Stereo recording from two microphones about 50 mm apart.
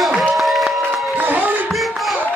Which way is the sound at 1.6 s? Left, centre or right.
Centre.